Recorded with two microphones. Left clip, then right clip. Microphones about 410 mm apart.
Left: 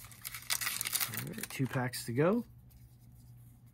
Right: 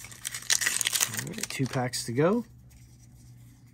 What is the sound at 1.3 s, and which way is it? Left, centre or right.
Speech, centre.